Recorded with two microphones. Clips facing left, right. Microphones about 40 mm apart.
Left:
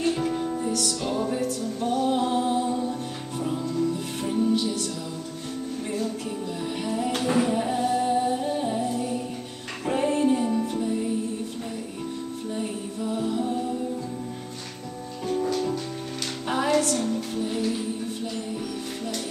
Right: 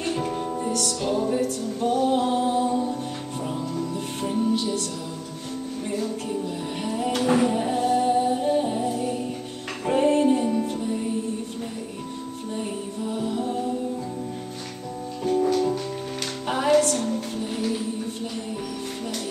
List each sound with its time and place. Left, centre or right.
0.0 s music: centre
1.8 s music: centre
5.9 s music: centre
7.2 s singing: centre
9.8 s music: centre
12.5 s music: centre
15.2 s music: centre